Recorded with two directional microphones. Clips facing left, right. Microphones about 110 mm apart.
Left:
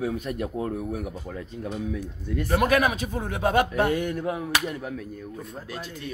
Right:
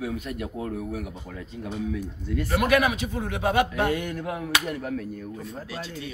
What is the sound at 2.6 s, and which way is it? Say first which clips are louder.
Speech: right 1 dB; 40° left (ahead or behind).